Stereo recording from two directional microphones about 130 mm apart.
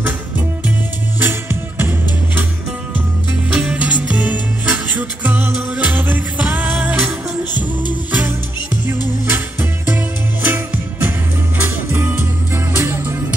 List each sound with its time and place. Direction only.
1.2 s music: 15° right (ahead or behind)
3.5 s music: 10° right (ahead or behind)